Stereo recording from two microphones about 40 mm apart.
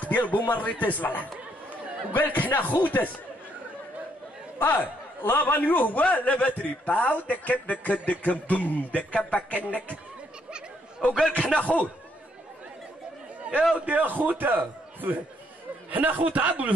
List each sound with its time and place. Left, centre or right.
0.1 s speech: left
4.6 s a man's voice: left
11.2 s a man's voice: left
13.4 s a sound: right
13.7 s a man's voice: right